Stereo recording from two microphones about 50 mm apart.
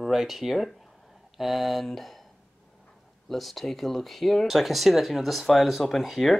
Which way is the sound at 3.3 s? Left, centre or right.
Centre.